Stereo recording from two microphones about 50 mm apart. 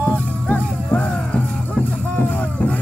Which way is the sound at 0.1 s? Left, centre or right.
Left.